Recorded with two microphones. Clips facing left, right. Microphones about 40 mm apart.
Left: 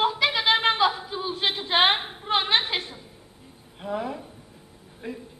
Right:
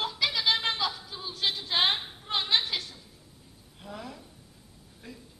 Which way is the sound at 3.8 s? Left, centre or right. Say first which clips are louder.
Left 12 dB; left.